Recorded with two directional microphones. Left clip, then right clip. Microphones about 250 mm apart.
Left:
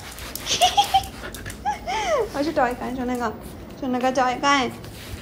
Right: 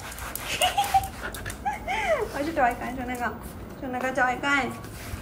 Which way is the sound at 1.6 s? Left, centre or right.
Left.